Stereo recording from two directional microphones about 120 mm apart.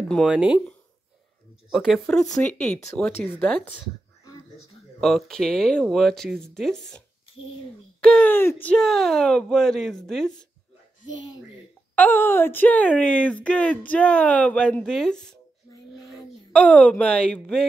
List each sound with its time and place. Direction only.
0.2 s speech: 10° right (ahead or behind)
1.7 s speech: centre (ahead or behind)
5.0 s speech: 5° left (ahead or behind)
8.0 s speech: 5° left (ahead or behind)
8.7 s speech: 5° left (ahead or behind)
11.9 s speech: 15° left (ahead or behind)
16.5 s speech: 10° left (ahead or behind)